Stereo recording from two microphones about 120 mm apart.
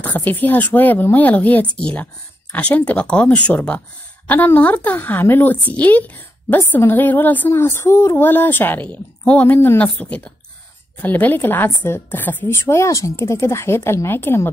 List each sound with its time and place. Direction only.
0.0 s a woman's voice: 15° left (ahead or behind)